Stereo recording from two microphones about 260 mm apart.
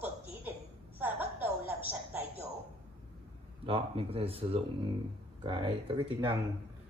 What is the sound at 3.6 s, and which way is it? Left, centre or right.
Speech, right.